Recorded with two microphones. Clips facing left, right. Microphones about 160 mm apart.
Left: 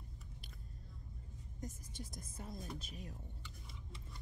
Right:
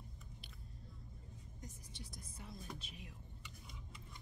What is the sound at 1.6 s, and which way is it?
A woman's voice, 45° left (ahead or behind).